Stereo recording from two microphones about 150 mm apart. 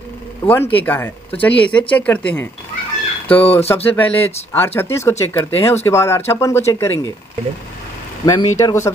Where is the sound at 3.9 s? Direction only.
10° left (ahead or behind).